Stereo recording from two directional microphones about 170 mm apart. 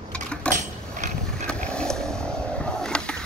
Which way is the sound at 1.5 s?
5° left (ahead or behind).